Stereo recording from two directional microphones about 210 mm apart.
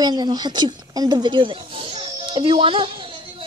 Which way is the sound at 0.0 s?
20° right (ahead or behind).